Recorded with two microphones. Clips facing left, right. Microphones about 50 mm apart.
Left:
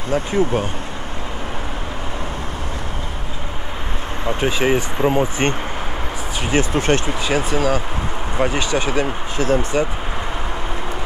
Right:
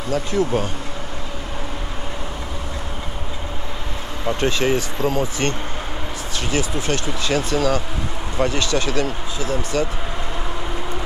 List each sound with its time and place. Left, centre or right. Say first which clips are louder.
0.1 s speech: left 2 dB; left
4.4 s speech: left 2 dB; centre
6.5 s speech: left 6 dB; left
7.2 s speech: even; centre
9.4 s speech: left 7 dB; left